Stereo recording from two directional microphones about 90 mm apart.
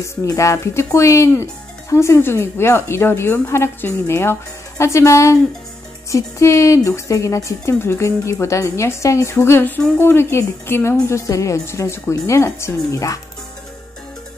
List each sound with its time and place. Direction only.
0.0 s speech: 35° left (ahead or behind)